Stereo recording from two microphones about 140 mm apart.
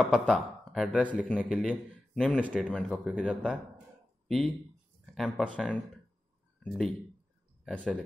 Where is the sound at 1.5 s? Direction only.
5° left (ahead or behind).